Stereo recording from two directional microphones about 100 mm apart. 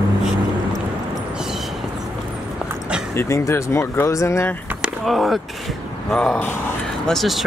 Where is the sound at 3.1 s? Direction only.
30° left (ahead or behind).